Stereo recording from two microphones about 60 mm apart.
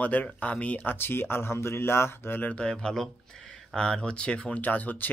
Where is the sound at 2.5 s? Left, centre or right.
Centre.